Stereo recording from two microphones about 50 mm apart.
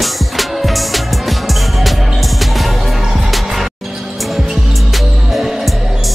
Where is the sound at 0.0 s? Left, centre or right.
Centre.